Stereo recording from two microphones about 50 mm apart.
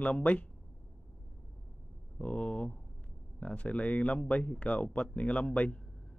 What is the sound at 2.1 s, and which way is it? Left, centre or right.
Speech, left.